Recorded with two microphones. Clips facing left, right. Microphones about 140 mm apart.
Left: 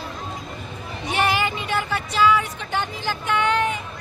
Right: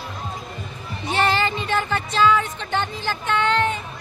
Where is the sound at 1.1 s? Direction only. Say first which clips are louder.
Right 1 dB; 10° left (ahead or behind).